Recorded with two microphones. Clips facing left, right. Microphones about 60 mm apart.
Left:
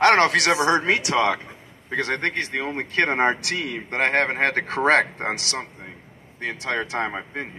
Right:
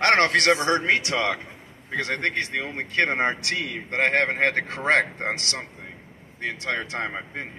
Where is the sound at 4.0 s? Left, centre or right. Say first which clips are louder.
Left 1 dB; left.